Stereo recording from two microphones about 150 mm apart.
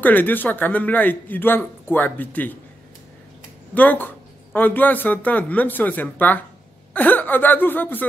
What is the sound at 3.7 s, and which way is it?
Speech, 10° left (ahead or behind).